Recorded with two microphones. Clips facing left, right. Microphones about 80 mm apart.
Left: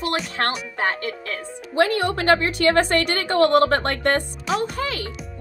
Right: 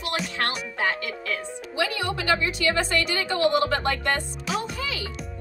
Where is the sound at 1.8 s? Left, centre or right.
Left.